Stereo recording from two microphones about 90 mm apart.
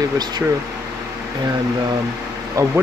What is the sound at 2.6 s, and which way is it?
Speech, 35° right (ahead or behind).